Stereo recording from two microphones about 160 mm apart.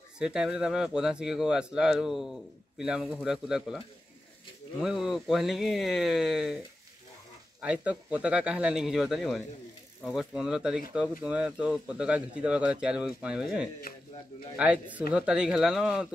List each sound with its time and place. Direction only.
0.2 s speech: 5° right (ahead or behind)
7.6 s speech: 5° right (ahead or behind)
13.9 s speech: 70° left (ahead or behind)
14.6 s speech: 10° right (ahead or behind)